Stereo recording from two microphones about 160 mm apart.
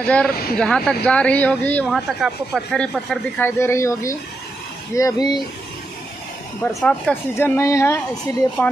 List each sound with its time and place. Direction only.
0.0 s speech: 10° left (ahead or behind)
3.4 s speech: 15° left (ahead or behind)
6.6 s speech: 5° left (ahead or behind)
7.3 s speech: 15° left (ahead or behind)